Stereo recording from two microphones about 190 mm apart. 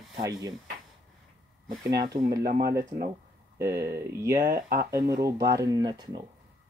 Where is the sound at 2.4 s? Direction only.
55° right (ahead or behind).